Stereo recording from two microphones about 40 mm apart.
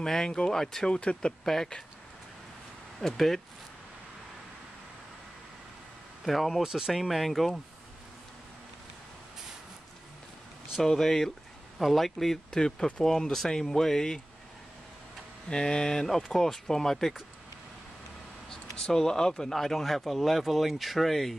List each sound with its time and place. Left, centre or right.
0.0 s speech: centre
0.9 s speech: left
1.4 s speech: centre
3.0 s speech: centre
6.2 s speech: centre
6.6 s speech: centre
6.9 s speech: centre
10.8 s speech: centre
12.5 s speech: centre
15.5 s speech: centre
18.5 s speech: centre